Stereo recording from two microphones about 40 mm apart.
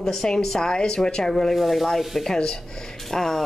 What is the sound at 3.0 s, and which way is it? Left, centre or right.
Speech, centre.